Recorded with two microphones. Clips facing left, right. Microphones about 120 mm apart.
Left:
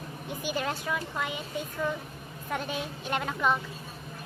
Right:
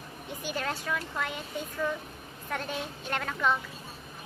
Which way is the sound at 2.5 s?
10° left (ahead or behind).